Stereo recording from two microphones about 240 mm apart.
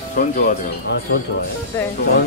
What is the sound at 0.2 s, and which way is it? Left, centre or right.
Speech, left.